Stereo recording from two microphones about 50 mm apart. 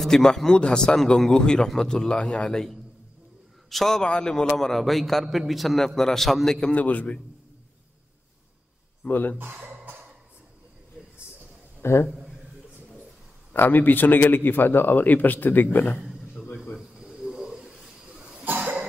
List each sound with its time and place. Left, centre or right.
0.0 s a man's voice: centre
3.7 s a man's voice: centre
6.7 s a man's voice: left
9.1 s a man's voice: left
9.5 s a sound: right
11.8 s a man's voice: left
13.5 s a man's voice: left
16.0 s a sound: centre
18.4 s cough: right